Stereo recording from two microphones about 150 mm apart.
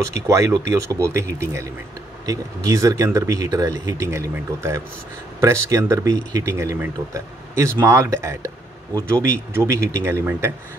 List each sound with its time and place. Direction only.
0.1 s speech: 20° right (ahead or behind)